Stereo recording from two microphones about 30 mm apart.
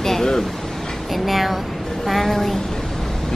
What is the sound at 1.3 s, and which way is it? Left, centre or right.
A woman's voice, centre.